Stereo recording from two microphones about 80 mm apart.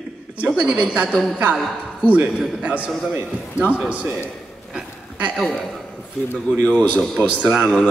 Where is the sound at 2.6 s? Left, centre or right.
Centre.